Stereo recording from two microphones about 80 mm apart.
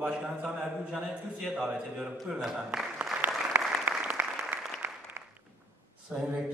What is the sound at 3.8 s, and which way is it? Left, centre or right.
Applause, right.